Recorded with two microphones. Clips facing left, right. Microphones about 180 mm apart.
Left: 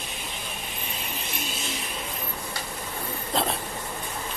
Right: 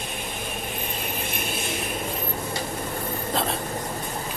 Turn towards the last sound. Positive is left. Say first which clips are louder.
# even
turn(degrees=0)  # may be behind; listen again after turning